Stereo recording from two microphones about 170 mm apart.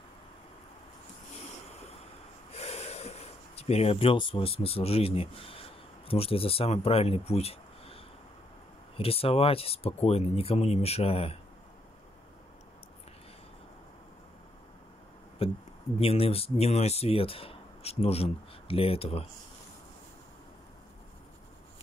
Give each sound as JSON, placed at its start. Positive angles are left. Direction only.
{"t": 2.5, "sound": "speech", "side_deg": 35}
{"t": 15.4, "sound": "speech", "side_deg": 35}